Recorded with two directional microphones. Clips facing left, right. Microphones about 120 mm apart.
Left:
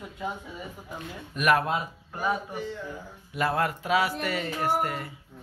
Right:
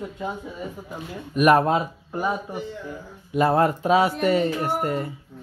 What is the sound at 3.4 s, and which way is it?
A man's voice, 30° right (ahead or behind).